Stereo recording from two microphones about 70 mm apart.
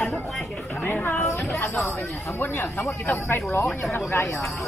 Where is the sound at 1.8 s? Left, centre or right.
Left.